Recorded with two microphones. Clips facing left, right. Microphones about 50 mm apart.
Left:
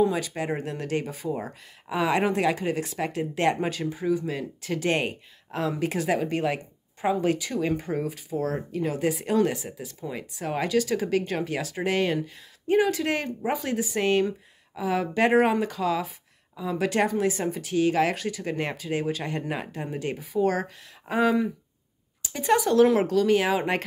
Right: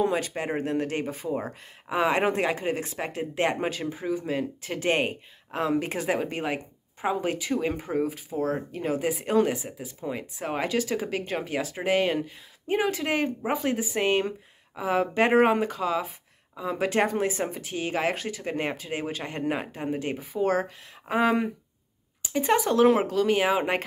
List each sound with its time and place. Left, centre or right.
0.4 s speech: right
7.6 s speech: centre